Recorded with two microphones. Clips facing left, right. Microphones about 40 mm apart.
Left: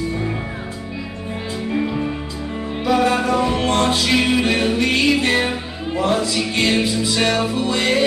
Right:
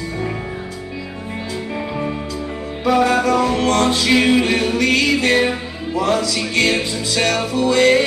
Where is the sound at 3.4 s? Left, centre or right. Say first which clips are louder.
Right 2 dB; left.